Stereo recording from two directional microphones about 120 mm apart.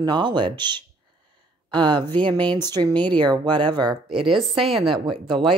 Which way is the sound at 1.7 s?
40° right (ahead or behind).